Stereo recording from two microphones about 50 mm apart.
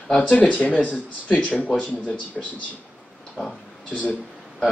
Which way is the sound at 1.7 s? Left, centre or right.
Centre.